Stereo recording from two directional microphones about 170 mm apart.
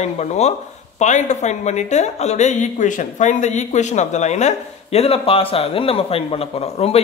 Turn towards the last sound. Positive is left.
turn(degrees=35)  # may be behind; listen again after turning